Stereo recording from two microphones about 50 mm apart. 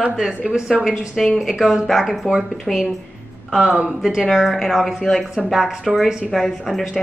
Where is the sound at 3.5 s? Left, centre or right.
Right.